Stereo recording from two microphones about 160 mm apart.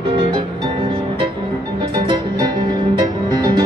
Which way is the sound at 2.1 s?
25° right (ahead or behind).